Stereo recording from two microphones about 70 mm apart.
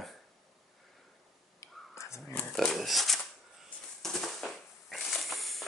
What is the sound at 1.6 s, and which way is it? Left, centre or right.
Whispering, left.